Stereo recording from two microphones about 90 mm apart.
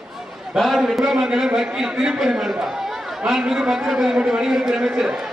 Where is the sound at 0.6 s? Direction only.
Centre (ahead or behind).